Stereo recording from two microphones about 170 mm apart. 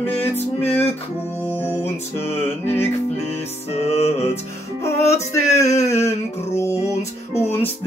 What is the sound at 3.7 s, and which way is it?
Music, 40° left (ahead or behind).